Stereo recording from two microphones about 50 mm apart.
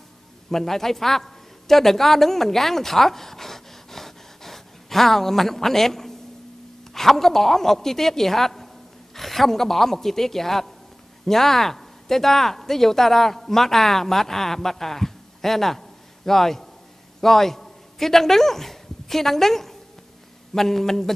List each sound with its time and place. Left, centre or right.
0.5 s a woman's voice: centre